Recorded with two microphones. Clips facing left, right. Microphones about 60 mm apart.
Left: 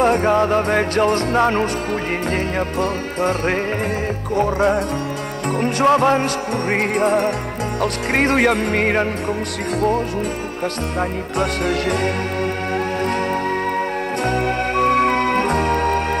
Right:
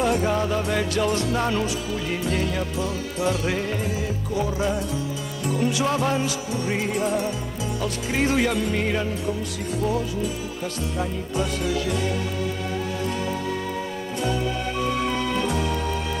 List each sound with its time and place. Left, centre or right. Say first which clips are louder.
0.0 s music: left 7 dB; left
14.2 s music: left 5 dB; left